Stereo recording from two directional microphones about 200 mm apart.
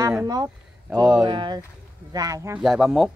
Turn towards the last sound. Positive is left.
turn(degrees=0)  # may be behind; listen again after turning